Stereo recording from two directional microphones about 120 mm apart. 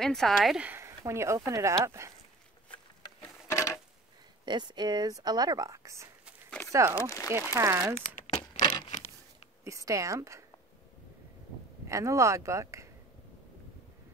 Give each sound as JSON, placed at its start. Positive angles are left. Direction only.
{"t": 0.0, "sound": "speech", "side_deg": 5}
{"t": 0.7, "sound": "speech", "side_deg": -20}
{"t": 3.2, "sound": "a sound", "side_deg": 25}
{"t": 4.5, "sound": "speech", "side_deg": -40}
{"t": 7.0, "sound": "speech", "side_deg": 25}
{"t": 7.2, "sound": "speech", "side_deg": -20}
{"t": 8.5, "sound": "a sound", "side_deg": 40}
{"t": 9.7, "sound": "speech", "side_deg": -25}
{"t": 11.9, "sound": "speech", "side_deg": -25}